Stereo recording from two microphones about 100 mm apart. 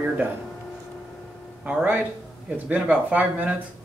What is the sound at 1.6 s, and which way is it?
Speech, 15° right (ahead or behind).